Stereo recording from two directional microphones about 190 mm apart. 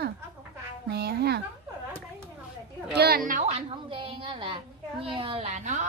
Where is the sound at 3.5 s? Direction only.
30° right (ahead or behind).